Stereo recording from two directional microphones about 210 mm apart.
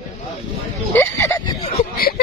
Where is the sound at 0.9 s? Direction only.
10° left (ahead or behind).